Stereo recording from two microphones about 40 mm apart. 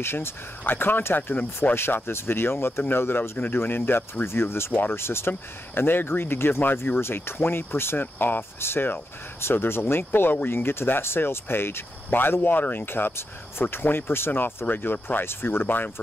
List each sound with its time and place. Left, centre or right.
0.0 s speech: left
0.7 s speech: left
2.0 s speech: left
2.9 s speech: left
3.5 s speech: left
5.8 s speech: left
8.0 s speech: left
8.4 s speech: left
12.8 s speech: left
14.7 s speech: left
15.2 s speech: left